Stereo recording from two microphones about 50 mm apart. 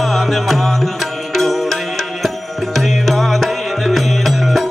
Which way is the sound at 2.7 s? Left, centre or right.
Centre.